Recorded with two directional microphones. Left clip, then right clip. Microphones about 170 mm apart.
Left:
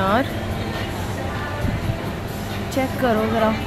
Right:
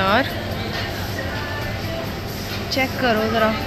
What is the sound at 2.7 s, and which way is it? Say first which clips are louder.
Speech: right 1 dB; 15° left (ahead or behind).